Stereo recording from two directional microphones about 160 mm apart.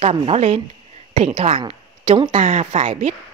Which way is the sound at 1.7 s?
30° right (ahead or behind).